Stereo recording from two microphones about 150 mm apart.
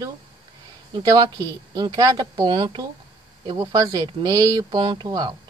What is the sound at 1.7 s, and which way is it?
Speech, 25° right (ahead or behind).